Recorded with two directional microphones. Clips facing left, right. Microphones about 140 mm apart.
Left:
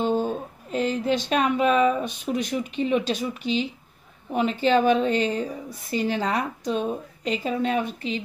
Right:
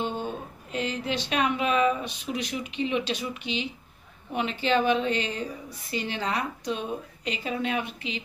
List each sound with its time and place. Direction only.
0.0 s a woman's voice: 40° left (ahead or behind)